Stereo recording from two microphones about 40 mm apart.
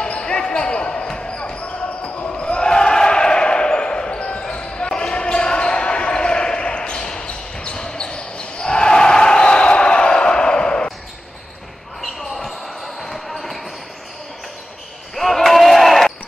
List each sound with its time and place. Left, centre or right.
0.2 s basketball bounce: left
12.0 s basketball bounce: centre
15.1 s basketball bounce: centre